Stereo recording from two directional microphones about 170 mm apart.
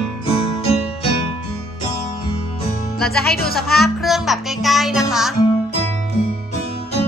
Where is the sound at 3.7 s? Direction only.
Centre (ahead or behind).